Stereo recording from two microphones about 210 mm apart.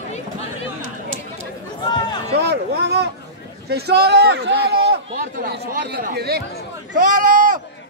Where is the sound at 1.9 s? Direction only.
20° left (ahead or behind).